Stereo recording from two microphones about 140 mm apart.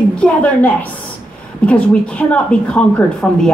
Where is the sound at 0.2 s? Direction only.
10° left (ahead or behind).